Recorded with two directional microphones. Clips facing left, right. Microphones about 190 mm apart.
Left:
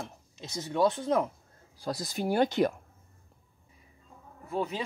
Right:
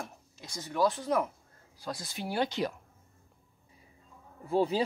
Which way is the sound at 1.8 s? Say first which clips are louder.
Left 6 dB; 40° left (ahead or behind).